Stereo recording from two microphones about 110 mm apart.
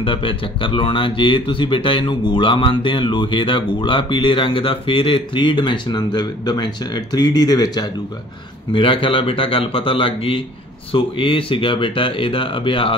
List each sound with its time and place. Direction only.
0.0 s speech: 50° left (ahead or behind); by 7.9 s 35° left (ahead or behind)
8.7 s speech: 50° left (ahead or behind)